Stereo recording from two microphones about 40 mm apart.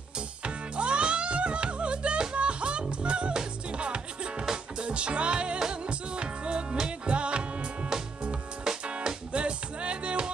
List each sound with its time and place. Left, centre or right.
0.4 s music: right
8.7 s music: centre
9.3 s music: right